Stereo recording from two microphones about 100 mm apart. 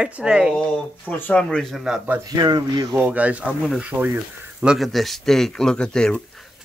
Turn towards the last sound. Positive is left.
turn(degrees=10)  # may be behind; listen again after turning